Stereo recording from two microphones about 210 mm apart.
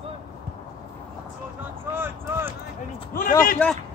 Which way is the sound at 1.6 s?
10° right (ahead or behind).